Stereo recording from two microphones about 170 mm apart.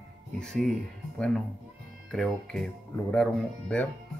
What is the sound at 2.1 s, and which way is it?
Speech, 5° left (ahead or behind).